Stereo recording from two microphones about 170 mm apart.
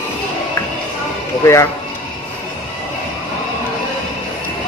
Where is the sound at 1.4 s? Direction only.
15° left (ahead or behind).